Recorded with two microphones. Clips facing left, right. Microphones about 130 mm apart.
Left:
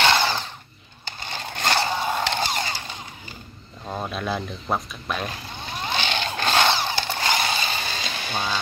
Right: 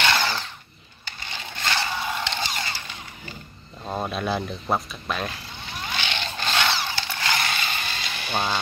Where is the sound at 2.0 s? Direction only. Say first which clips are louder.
Left 4 dB; 45° left (ahead or behind).